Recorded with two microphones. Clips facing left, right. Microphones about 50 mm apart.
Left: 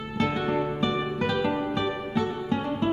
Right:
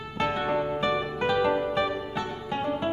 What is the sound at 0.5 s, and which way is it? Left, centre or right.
Music, centre.